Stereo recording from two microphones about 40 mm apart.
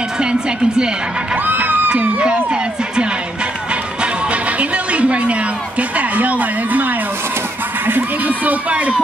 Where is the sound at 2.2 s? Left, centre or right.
Right.